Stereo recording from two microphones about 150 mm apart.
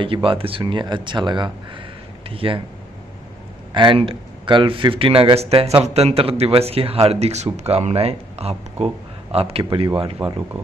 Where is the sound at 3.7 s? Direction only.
35° right (ahead or behind).